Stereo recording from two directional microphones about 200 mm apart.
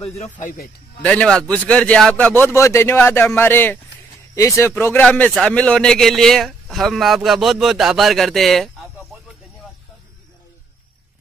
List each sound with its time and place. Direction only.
0.0 s speech: 35° left (ahead or behind)
1.0 s a man's voice: 5° left (ahead or behind)